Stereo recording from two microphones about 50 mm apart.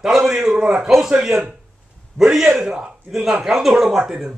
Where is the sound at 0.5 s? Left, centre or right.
Right.